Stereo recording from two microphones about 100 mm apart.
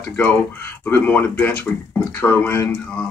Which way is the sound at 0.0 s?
20° left (ahead or behind).